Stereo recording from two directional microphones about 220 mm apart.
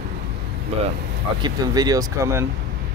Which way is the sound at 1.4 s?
15° right (ahead or behind).